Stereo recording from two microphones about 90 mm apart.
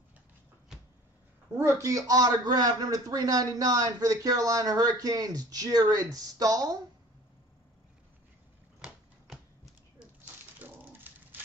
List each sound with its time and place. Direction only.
1.6 s a man's voice: 35° right (ahead or behind)
8.8 s typewriter: 10° right (ahead or behind)
10.6 s a sound: 20° right (ahead or behind)